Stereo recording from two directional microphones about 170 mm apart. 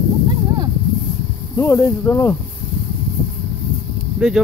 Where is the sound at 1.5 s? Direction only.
15° left (ahead or behind).